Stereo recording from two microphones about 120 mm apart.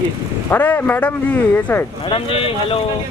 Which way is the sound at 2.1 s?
50° left (ahead or behind).